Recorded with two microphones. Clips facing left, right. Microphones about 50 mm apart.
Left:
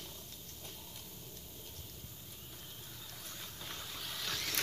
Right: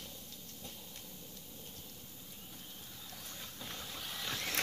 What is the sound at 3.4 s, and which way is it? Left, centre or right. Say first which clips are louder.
Boat: even; centre.